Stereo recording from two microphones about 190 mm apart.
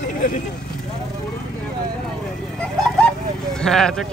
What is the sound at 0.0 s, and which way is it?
Vehicle, 45° left (ahead or behind).